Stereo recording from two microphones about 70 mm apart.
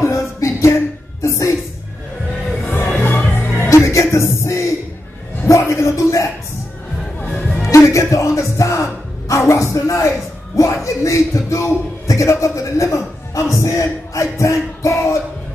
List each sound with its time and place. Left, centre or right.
0.0 s music: left
2.9 s music: left
3.6 s music: left
7.3 s music: centre
7.7 s music: left
10.5 s a sound: left
13.6 s music: left